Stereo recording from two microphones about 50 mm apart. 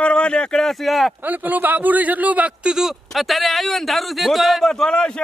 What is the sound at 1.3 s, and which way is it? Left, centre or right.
Speech, right.